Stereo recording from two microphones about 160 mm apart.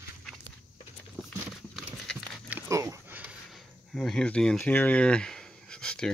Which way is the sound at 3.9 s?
5° left (ahead or behind).